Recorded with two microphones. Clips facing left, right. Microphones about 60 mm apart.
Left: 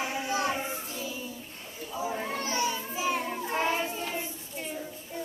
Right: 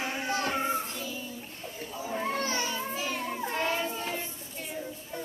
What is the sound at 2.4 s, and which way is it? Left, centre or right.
Children playing, centre.